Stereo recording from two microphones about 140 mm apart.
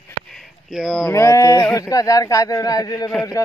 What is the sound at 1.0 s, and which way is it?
Speech, 20° left (ahead or behind).